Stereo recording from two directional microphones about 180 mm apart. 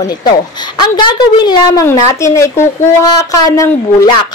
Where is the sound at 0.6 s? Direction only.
25° left (ahead or behind).